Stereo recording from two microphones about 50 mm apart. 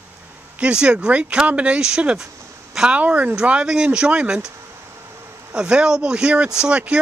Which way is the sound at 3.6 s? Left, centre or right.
Centre.